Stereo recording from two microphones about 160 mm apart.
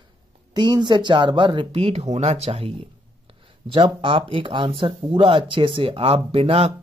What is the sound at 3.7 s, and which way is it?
Speech, 30° right (ahead or behind).